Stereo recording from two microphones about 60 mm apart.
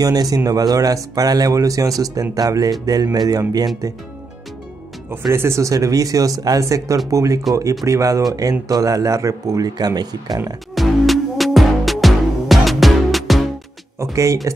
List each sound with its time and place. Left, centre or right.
0.0 s speech: right
2.3 s speech: right
5.3 s speech: right
6.6 s speech: right
10.7 s music: centre
14.1 s speech: right